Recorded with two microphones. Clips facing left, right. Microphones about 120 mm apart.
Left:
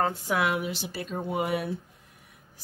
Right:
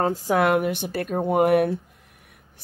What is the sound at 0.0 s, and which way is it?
Speech, 35° right (ahead or behind).